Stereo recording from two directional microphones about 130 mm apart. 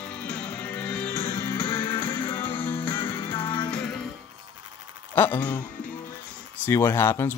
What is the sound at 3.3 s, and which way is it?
Music, 40° left (ahead or behind).